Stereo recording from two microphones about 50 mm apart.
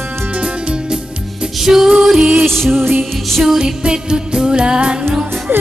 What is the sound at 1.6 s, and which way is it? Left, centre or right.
Music, centre.